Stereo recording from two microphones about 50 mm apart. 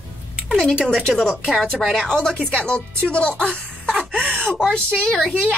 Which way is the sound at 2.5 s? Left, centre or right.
Left.